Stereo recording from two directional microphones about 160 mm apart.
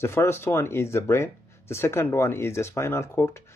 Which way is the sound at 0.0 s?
15° left (ahead or behind).